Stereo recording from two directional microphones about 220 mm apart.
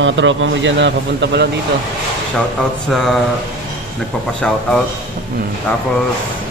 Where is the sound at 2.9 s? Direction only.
Centre (ahead or behind).